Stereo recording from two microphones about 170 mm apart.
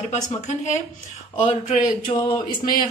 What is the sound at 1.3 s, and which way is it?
Speech, 30° left (ahead or behind).